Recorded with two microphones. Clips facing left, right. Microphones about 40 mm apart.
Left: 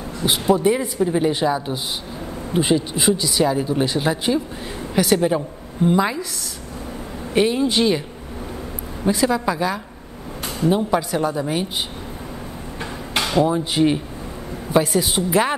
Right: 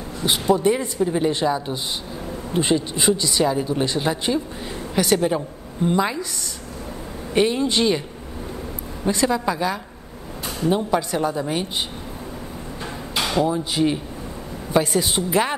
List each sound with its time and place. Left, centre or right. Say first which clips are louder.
0.2 s speech: left 1 dB; centre
7.3 s speech: left 1 dB; centre
9.0 s speech: left 2 dB; centre
13.4 s speech: left 3 dB; centre
14.7 s speech: left 2 dB; centre